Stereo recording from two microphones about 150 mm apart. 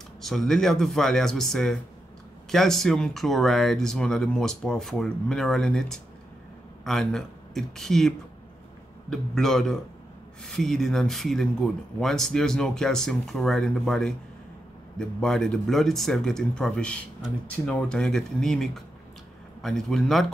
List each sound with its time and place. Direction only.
0.2 s speech: centre (ahead or behind)
9.1 s speech: 5° left (ahead or behind)